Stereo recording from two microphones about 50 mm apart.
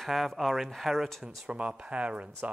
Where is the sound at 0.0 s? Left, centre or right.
Centre.